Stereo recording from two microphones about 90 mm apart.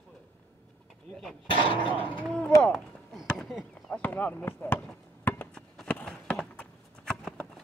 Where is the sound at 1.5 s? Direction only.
70° left (ahead or behind).